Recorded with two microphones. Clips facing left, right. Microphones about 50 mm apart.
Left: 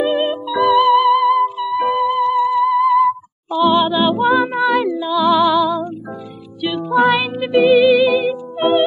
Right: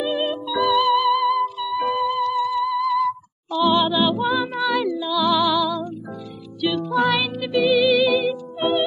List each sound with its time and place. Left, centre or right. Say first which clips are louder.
0.0 s music: left 6 dB; left
4.0 s music: left 6 dB; left
7.4 s music: left 7 dB; left
7.7 s music: left 4 dB; centre
8.5 s music: left 7 dB; left